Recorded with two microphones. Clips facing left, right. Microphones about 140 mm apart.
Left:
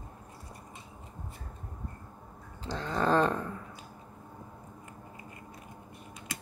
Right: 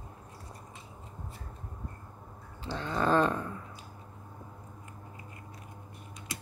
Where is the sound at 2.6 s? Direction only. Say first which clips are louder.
Even; 40° left (ahead or behind).